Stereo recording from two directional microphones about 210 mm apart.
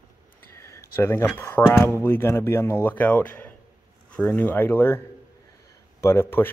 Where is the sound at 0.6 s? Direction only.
15° left (ahead or behind).